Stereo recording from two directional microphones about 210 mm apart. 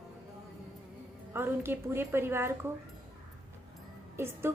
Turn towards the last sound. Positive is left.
turn(degrees=-10)  # may be behind; listen again after turning